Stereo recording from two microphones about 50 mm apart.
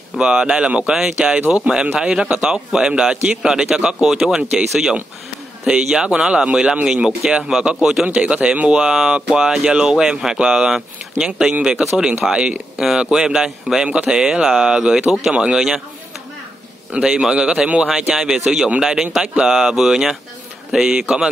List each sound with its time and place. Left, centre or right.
0.2 s speech: centre
13.8 s speech: right
16.9 s speech: centre
18.1 s speech: centre